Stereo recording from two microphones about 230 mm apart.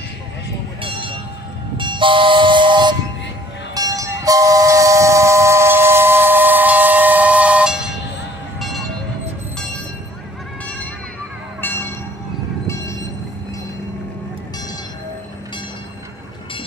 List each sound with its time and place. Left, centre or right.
1.8 s train: right; by 7.8 s centre